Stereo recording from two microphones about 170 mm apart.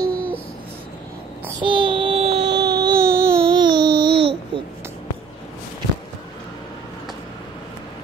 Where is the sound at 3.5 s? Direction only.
25° right (ahead or behind).